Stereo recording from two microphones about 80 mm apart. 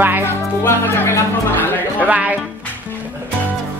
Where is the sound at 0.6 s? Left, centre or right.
Left.